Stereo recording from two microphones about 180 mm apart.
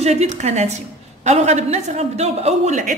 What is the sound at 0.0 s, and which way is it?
A woman's voice, 35° right (ahead or behind).